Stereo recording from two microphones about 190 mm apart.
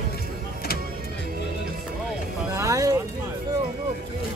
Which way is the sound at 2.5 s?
15° right (ahead or behind).